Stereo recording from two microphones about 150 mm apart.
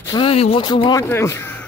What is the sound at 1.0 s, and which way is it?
Speech, 15° left (ahead or behind).